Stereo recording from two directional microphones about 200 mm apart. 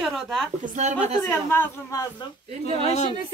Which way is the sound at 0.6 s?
40° right (ahead or behind).